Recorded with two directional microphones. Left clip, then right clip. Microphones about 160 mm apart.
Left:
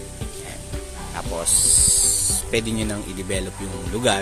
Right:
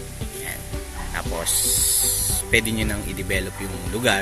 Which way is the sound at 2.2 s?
10° left (ahead or behind).